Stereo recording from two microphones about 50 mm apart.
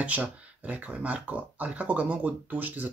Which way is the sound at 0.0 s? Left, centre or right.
Right.